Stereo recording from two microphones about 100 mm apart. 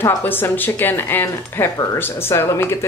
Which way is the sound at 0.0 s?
20° left (ahead or behind).